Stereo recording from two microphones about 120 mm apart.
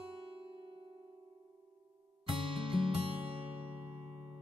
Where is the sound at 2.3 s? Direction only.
45° right (ahead or behind).